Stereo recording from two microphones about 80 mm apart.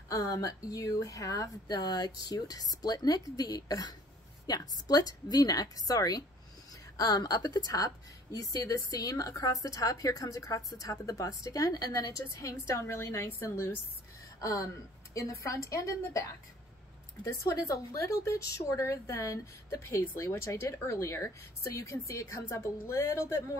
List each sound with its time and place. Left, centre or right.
0.1 s a woman's voice: left
14.4 s a woman's voice: left